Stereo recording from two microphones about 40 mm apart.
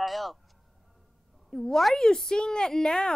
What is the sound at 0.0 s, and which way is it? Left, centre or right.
Speech, centre.